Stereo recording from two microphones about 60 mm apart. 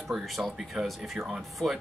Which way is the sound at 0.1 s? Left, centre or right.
Centre.